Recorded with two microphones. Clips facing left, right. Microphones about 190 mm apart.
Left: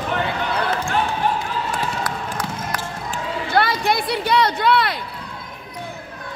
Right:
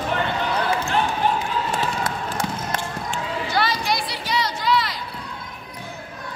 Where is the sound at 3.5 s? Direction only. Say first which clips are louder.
Left 5 dB; 55° left (ahead or behind).